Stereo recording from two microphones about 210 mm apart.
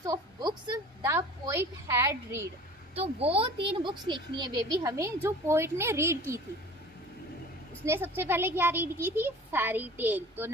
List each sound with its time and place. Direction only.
0.0 s a sound: 20° right (ahead or behind)
2.9 s speech: 30° right (ahead or behind); by 6.4 s 10° right (ahead or behind)
7.8 s a child's voice: 10° right (ahead or behind)